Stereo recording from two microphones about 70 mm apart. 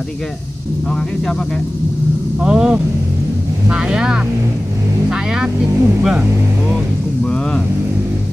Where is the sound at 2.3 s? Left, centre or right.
Centre.